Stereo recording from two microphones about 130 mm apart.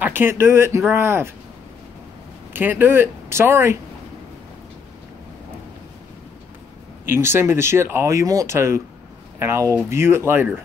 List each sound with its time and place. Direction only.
0.0 s speech: 15° right (ahead or behind)
2.5 s speech: 15° right (ahead or behind)
7.1 s speech: 20° right (ahead or behind)